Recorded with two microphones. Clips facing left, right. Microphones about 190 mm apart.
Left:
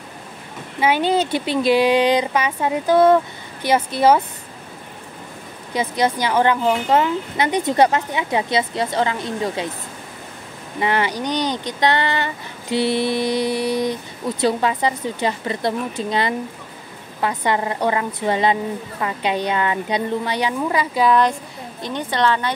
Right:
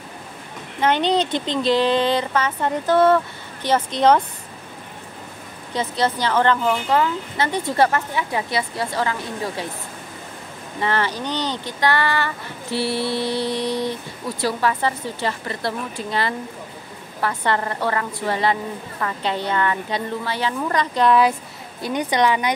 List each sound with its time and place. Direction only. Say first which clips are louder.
0.7 s a woman's voice: left 1 dB; 10° left (ahead or behind)
5.7 s speech: left 2 dB; 10° left (ahead or behind)
10.8 s a woman's voice: left 2 dB; 15° left (ahead or behind)
21.8 s a woman's voice: right 1 dB; 15° right (ahead or behind)